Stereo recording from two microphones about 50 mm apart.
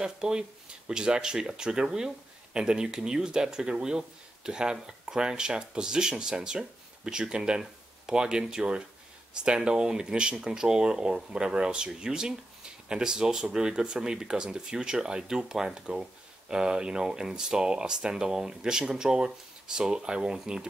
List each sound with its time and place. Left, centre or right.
0.0 s speech: centre